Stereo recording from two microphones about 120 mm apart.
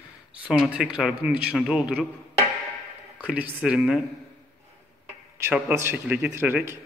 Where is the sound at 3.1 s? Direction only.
10° right (ahead or behind).